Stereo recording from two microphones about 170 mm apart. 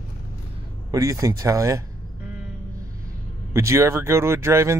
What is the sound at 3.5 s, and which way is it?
Speech, 15° right (ahead or behind).